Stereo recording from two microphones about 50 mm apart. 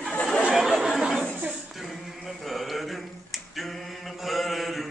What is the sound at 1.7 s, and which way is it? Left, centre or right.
Finger snapping, centre.